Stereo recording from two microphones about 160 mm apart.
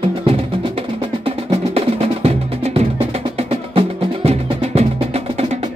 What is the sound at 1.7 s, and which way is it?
Music, 40° right (ahead or behind).